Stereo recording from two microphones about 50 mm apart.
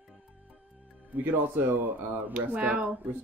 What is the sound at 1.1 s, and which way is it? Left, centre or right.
A man's voice, right.